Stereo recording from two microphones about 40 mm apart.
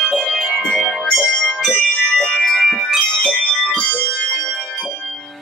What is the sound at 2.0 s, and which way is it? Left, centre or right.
Music, centre.